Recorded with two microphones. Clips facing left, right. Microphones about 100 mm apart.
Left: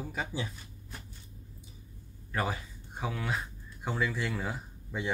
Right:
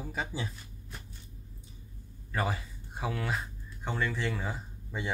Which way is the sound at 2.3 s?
Centre (ahead or behind).